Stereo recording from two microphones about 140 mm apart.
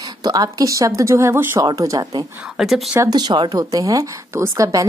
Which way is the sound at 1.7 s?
25° right (ahead or behind).